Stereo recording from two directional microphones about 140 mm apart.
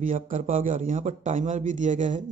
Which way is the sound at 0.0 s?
65° right (ahead or behind).